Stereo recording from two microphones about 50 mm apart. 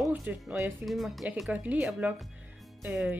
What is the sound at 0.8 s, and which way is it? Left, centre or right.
Speech, centre.